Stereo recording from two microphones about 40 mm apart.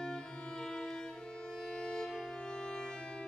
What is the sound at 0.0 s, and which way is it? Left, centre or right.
Music, centre.